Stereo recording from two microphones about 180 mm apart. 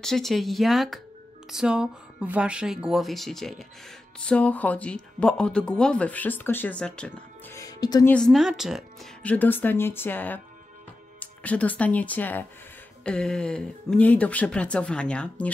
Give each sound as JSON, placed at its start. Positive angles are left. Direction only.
{"t": 0.0, "sound": "speech", "side_deg": 0}
{"t": 7.5, "sound": "speech", "side_deg": 20}
{"t": 8.1, "sound": "speech", "side_deg": 0}